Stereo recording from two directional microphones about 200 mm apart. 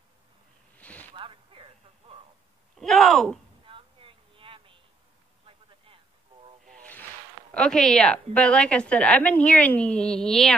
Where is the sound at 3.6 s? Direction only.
25° right (ahead or behind).